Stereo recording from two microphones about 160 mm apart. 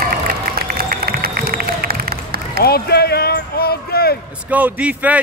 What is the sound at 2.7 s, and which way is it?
Speech, 80° left.